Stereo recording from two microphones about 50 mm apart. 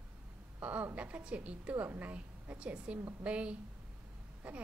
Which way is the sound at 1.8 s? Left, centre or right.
Right.